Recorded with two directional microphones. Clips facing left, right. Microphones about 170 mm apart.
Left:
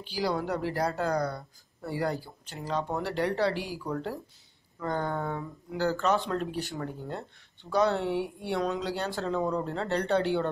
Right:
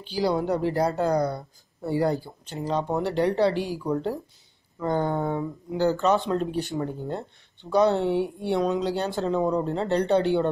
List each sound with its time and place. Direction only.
0.0 s speech: 25° right (ahead or behind)